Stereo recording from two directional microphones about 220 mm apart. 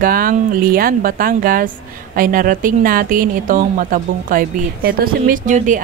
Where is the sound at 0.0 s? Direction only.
40° right (ahead or behind).